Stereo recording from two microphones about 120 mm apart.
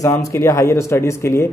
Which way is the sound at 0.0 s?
25° left (ahead or behind).